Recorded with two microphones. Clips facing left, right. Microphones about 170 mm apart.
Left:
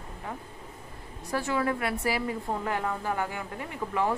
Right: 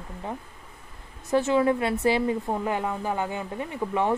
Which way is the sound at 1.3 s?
20° right (ahead or behind).